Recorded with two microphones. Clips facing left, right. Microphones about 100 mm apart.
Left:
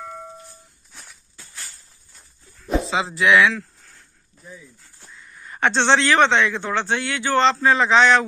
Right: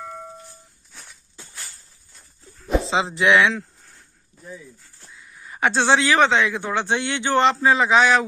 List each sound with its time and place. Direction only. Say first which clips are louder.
0.0 s music: even; centre (ahead or behind)
1.4 s a sound: right 4 dB; 20° right (ahead or behind)
2.9 s speech: even; 25° right (ahead or behind)
5.0 s a man's voice: left 1 dB; 5° right (ahead or behind)